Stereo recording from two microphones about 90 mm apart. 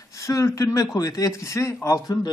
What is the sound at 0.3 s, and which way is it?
A man's voice, 35° left (ahead or behind).